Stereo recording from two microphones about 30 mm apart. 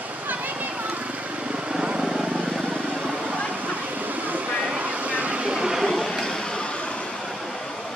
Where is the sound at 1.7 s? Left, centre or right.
Right.